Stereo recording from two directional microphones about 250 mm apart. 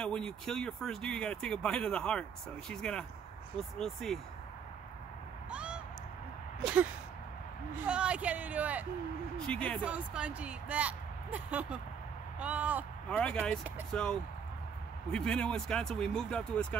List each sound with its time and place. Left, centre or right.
0.0 s speech: centre
5.5 s meow: centre
7.7 s speech: centre
9.5 s speech: centre
13.1 s speech: centre